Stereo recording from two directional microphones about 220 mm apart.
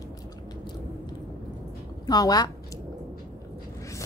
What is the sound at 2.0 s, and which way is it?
Speech, 15° left (ahead or behind).